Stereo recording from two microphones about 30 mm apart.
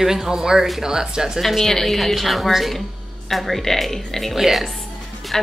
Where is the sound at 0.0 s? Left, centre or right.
Centre.